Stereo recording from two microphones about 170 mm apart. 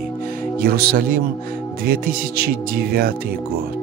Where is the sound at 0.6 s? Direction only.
60° right (ahead or behind).